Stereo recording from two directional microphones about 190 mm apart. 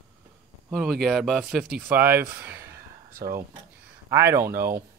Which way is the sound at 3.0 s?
50° right (ahead or behind).